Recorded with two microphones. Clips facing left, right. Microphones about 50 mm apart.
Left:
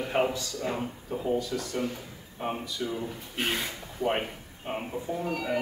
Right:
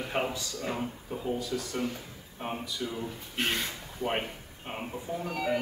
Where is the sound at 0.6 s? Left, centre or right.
Centre.